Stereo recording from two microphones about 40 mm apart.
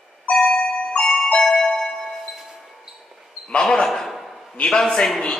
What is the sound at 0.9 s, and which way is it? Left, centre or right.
Glockenspiel, centre.